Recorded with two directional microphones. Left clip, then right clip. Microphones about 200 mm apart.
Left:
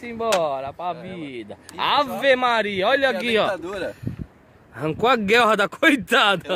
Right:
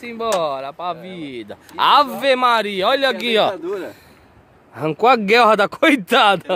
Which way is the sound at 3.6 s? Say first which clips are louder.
Right 3 dB; 55° left (ahead or behind).